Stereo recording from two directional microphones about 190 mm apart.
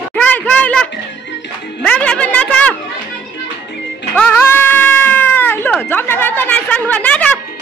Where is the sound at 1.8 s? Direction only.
5° left (ahead or behind).